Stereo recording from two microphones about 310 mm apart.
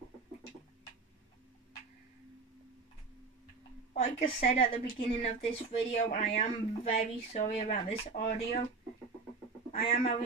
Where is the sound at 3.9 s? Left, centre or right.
Left.